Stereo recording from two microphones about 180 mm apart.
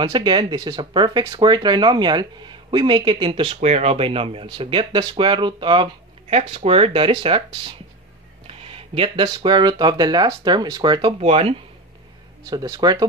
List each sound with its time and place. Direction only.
0.0 s speech: 25° right (ahead or behind)
8.5 s speech: 30° right (ahead or behind)
12.4 s speech: 20° right (ahead or behind)